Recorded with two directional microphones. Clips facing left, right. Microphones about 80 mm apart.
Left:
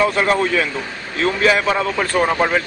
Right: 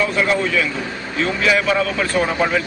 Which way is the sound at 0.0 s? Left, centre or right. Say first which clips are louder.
Left 2 dB; left.